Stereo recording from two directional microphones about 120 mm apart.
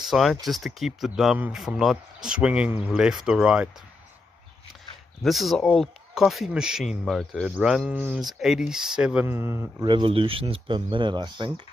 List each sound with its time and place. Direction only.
0.0 s speech: centre (ahead or behind)
5.2 s speech: centre (ahead or behind); by 9.8 s 20° right (ahead or behind)
9.8 s speech: 45° right (ahead or behind)